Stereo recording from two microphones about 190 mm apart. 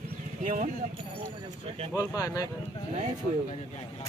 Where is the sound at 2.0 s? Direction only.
20° left (ahead or behind).